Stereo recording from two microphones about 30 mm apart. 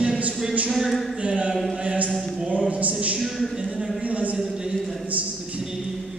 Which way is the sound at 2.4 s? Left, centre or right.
Right.